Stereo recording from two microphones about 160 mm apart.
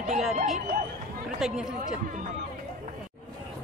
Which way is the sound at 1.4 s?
5° right (ahead or behind).